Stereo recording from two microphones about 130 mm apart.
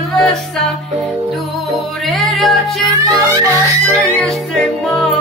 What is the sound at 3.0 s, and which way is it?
Music, 30° right (ahead or behind).